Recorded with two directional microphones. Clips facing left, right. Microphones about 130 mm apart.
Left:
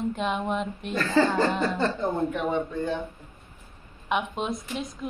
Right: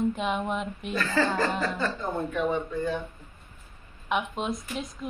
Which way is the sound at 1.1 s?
25° left (ahead or behind).